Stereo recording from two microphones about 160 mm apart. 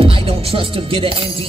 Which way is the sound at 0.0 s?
35° right (ahead or behind).